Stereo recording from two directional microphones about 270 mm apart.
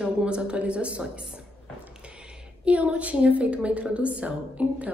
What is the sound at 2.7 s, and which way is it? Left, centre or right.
A woman's voice, centre.